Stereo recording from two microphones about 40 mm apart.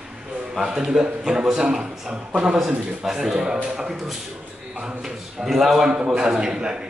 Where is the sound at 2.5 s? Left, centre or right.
Centre.